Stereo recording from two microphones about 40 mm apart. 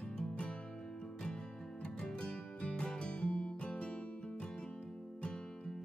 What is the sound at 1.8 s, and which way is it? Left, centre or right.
Music, left.